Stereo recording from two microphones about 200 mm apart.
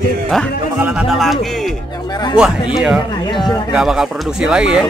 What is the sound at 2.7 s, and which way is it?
Speech, 5° right (ahead or behind).